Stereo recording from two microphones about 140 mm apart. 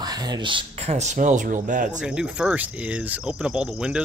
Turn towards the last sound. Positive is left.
turn(degrees=-5)  # may be behind; listen again after turning